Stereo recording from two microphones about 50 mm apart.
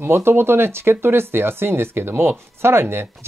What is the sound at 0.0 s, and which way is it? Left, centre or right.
Speech, right.